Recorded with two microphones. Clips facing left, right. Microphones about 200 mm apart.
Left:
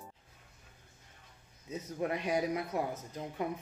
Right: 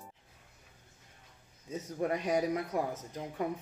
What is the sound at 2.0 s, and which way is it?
Speech, 45° right (ahead or behind).